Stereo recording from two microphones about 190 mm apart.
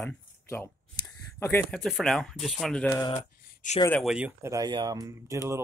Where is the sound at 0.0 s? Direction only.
10° left (ahead or behind).